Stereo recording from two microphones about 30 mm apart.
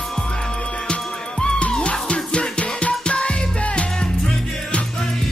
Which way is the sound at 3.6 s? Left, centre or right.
Left.